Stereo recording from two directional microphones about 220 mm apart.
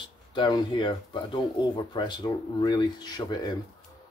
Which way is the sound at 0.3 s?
20° left (ahead or behind).